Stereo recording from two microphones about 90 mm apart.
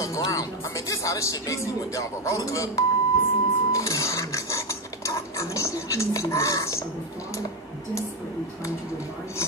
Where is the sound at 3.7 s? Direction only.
35° left (ahead or behind).